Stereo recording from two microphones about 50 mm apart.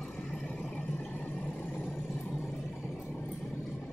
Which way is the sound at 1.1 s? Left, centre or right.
Left.